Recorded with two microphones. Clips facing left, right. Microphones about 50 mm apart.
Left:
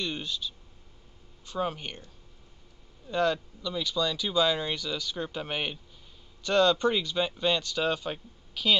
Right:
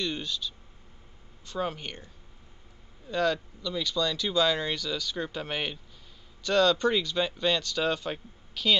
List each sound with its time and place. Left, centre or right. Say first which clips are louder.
0.0 s speech: right 1 dB; centre
3.1 s speech: even; centre